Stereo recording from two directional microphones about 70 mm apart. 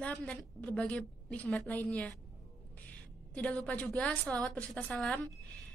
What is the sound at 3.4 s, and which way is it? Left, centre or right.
A woman's voice, centre.